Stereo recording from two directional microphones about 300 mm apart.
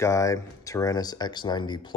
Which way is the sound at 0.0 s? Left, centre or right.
Centre.